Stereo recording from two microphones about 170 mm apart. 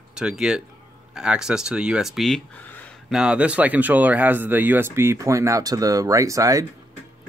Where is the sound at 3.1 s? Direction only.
5° right (ahead or behind).